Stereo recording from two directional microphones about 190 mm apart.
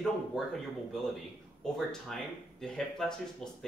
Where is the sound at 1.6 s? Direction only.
Centre (ahead or behind).